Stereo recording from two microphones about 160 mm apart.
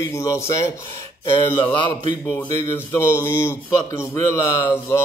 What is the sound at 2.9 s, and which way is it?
Speech, 15° left (ahead or behind).